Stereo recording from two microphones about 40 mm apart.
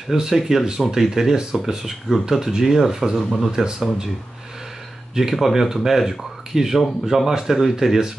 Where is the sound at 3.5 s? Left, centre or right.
Centre.